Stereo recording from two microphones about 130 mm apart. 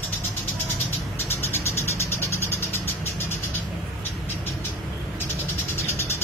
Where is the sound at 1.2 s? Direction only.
20° left (ahead or behind).